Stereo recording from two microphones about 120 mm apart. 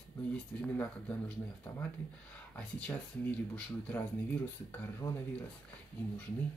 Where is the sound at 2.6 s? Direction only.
10° left (ahead or behind).